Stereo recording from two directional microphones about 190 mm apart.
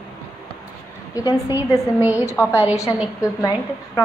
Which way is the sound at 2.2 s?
15° left (ahead or behind).